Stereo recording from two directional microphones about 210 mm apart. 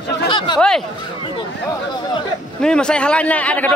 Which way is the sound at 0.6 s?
5° left (ahead or behind).